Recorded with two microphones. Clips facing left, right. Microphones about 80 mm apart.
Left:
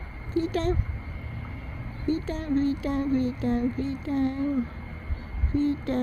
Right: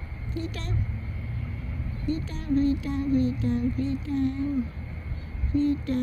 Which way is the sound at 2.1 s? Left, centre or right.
Left.